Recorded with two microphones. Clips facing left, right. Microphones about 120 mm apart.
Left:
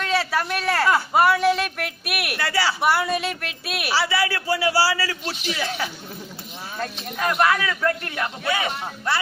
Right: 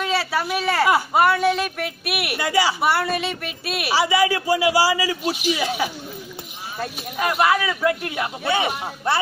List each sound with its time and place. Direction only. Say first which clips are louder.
0.0 s a sound: even; 5° right (ahead or behind)
1.1 s a woman's voice: even; centre (ahead or behind)
2.4 s a man's voice: right 4 dB; 15° right (ahead or behind)
2.8 s a woman's voice: even; centre (ahead or behind)
3.9 s a man's voice: right 4 dB; 15° right (ahead or behind)